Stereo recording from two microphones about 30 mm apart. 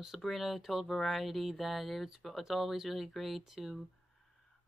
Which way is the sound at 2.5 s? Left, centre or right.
Centre.